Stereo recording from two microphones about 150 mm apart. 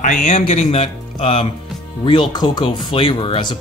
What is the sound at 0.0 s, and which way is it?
Speech, 55° left (ahead or behind).